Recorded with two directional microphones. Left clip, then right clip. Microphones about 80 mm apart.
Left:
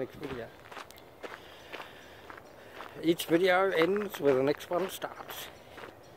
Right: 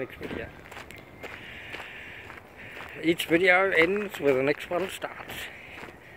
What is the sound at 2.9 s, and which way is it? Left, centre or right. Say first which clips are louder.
Speech: right 3 dB; left.